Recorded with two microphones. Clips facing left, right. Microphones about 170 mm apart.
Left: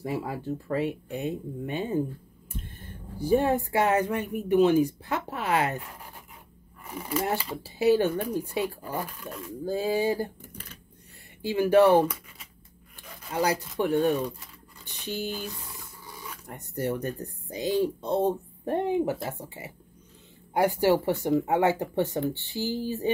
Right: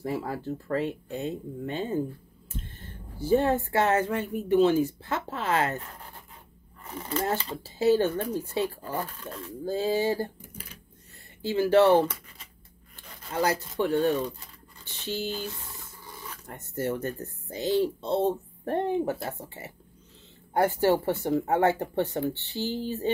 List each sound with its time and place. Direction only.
0.0 s speech: 15° left (ahead or behind)
11.4 s speech: 15° left (ahead or behind)
13.3 s speech: 15° left (ahead or behind)
16.4 s speech: 15° left (ahead or behind)
22.6 s speech: 20° right (ahead or behind)
22.8 s speech: 15° left (ahead or behind)